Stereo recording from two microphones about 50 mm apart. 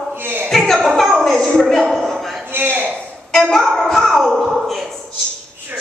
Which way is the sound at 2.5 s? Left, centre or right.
Right.